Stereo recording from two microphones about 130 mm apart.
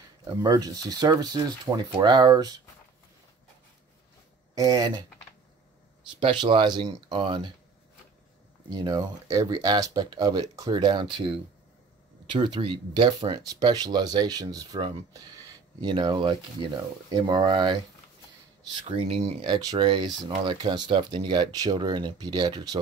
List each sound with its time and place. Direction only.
0.4 s speech: 30° right (ahead or behind)
4.6 s speech: 30° right (ahead or behind)
6.4 s speech: 35° right (ahead or behind)
8.6 s speech: 30° right (ahead or behind)
18.9 s speech: 50° right (ahead or behind)
19.4 s speech: 35° right (ahead or behind)